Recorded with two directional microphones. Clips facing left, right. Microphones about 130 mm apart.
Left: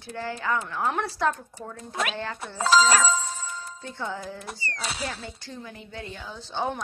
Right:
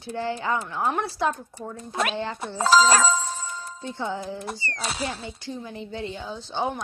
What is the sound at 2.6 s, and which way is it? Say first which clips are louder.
Speech: right 2 dB; 40° right (ahead or behind).